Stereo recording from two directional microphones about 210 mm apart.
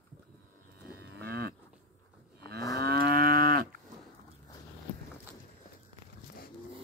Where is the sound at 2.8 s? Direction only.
45° right (ahead or behind).